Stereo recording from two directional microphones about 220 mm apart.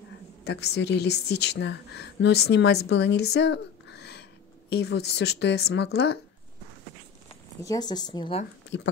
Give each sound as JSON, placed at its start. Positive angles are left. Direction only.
{"t": 0.4, "sound": "a woman's voice", "side_deg": 50}
{"t": 7.2, "sound": "speech", "side_deg": 15}